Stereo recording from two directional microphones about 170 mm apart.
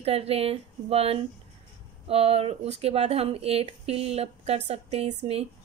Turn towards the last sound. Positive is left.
turn(degrees=-35)  # may be behind; listen again after turning